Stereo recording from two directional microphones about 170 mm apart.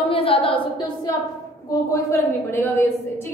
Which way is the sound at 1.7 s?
20° left (ahead or behind).